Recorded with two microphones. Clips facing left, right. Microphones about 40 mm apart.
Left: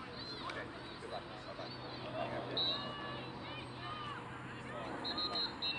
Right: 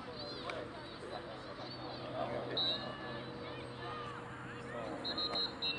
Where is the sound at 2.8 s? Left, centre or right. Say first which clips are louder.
Even; left.